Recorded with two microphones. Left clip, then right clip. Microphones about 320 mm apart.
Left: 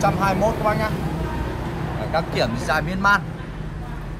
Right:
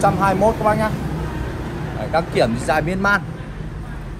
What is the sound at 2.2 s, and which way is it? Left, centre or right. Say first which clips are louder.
Speech: right 5 dB; left.